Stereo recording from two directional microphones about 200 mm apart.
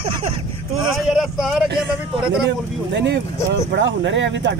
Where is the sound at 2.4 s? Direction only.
60° right (ahead or behind).